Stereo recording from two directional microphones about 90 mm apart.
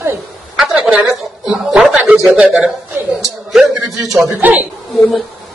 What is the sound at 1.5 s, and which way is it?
A woman's voice, 5° right (ahead or behind).